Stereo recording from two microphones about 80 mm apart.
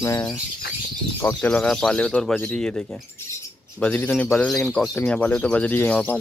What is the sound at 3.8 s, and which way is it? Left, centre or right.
Speech, centre.